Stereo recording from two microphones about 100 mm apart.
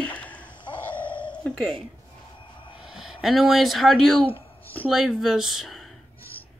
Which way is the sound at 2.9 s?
5° right (ahead or behind).